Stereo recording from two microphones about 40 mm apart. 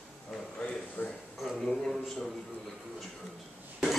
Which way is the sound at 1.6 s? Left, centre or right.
Centre.